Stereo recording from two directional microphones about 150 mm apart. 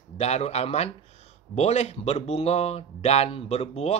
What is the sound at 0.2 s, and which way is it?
Speech, 45° left (ahead or behind).